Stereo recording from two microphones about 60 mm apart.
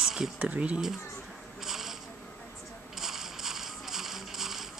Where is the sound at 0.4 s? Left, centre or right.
Right.